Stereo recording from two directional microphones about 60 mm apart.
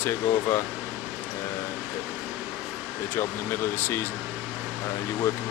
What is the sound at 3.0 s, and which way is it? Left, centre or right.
Speech, left.